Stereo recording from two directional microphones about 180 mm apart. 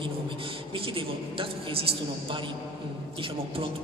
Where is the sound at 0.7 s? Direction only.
30° right (ahead or behind).